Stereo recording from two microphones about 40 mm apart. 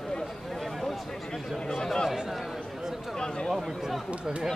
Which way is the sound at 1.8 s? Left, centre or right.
Centre.